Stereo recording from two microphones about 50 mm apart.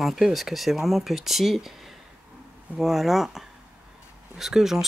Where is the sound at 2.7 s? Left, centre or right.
Centre.